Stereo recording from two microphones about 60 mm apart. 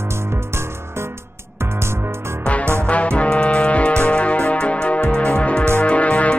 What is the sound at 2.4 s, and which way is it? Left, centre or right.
Music, centre.